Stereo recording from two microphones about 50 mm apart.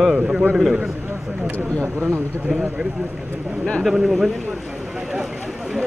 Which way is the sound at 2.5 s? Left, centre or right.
Centre.